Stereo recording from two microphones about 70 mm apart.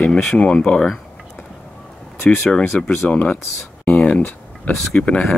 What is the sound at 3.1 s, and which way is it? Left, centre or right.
Speech, left.